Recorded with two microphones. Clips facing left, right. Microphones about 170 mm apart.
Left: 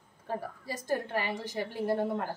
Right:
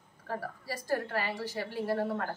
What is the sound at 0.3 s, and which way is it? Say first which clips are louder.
A woman's voice: left 1 dB; 20° left (ahead or behind).